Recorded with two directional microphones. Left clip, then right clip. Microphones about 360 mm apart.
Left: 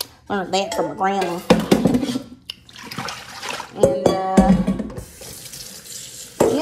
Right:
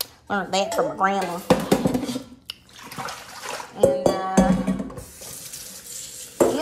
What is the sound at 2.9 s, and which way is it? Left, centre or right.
Bathtub, left.